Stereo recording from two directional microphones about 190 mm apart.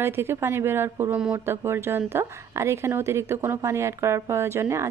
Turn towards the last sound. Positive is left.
turn(degrees=-15)  # may be behind; listen again after turning